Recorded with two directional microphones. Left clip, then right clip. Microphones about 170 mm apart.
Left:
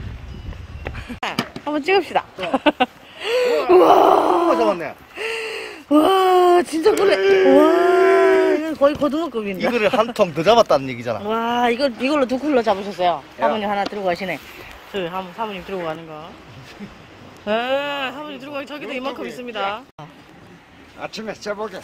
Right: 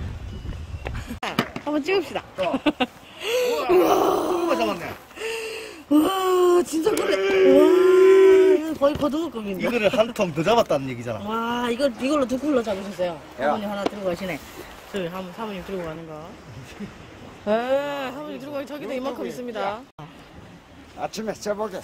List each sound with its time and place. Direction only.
0.8 s a sound: 5° right (ahead or behind)
3.7 s groan: centre (ahead or behind)
4.5 s a sound: 30° left (ahead or behind)
5.2 s gasp: 10° right (ahead or behind)
13.6 s speech: centre (ahead or behind)
17.5 s speech: 5° right (ahead or behind)
21.0 s speech: 40° right (ahead or behind)